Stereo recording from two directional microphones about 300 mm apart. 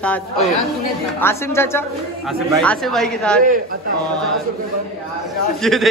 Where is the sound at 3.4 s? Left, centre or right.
Right.